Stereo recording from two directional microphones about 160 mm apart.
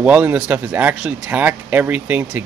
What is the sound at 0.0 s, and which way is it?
Speech, 10° right (ahead or behind).